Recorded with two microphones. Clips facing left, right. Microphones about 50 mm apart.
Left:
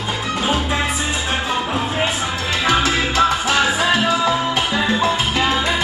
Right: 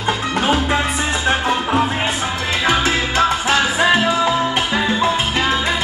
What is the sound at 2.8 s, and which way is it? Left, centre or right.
Salsa music, right.